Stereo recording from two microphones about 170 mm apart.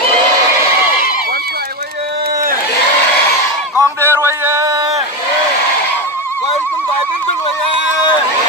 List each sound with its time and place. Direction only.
3.8 s music: 15° right (ahead or behind)